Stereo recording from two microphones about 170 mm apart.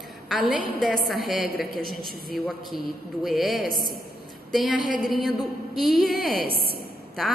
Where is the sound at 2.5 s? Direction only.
Centre (ahead or behind).